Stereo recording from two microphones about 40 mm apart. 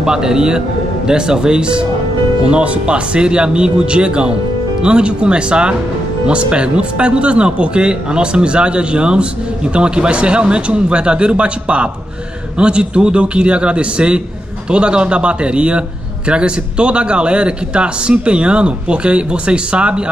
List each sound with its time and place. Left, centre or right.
0.0 s a man's voice: centre